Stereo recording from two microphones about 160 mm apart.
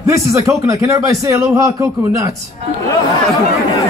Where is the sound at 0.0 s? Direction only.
20° right (ahead or behind).